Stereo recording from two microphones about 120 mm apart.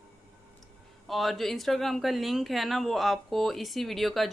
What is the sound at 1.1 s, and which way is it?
Speech, centre (ahead or behind).